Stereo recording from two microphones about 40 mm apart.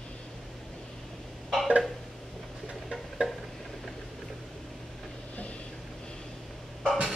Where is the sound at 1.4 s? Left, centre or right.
Centre.